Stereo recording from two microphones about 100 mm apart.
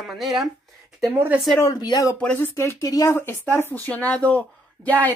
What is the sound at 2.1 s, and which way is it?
Speech, 15° left (ahead or behind).